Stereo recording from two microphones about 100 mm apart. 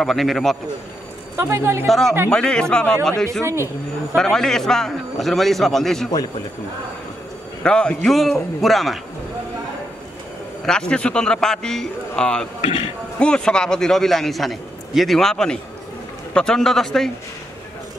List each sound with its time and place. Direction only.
0.0 s a man's voice: centre (ahead or behind)
1.3 s a woman's voice: 25° right (ahead or behind)
1.9 s a man's voice: 5° left (ahead or behind)
3.4 s a woman's voice: 30° right (ahead or behind)
4.1 s a man's voice: 5° left (ahead or behind)
7.6 s a man's voice: 10° left (ahead or behind)
10.6 s a man's voice: 10° left (ahead or behind)